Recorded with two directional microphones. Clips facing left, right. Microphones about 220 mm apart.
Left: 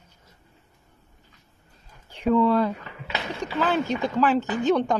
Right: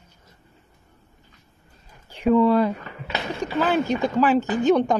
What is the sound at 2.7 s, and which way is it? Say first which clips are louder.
Speech: right 3 dB; 45° right (ahead or behind).